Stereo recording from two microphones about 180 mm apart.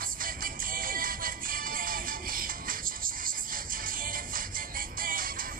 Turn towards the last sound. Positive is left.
turn(degrees=-50)  # may be behind; listen again after turning